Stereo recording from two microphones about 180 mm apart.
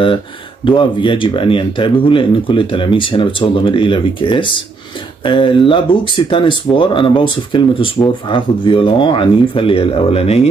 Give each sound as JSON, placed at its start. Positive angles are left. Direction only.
{"t": 0.7, "sound": "speech", "side_deg": 30}